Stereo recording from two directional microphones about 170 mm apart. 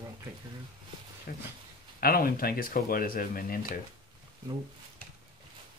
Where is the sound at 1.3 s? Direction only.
55° left (ahead or behind).